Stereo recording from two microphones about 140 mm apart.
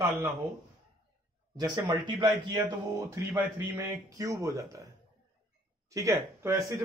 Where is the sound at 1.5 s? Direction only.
30° right (ahead or behind).